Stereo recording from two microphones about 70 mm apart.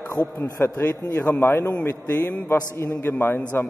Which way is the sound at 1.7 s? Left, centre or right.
Left.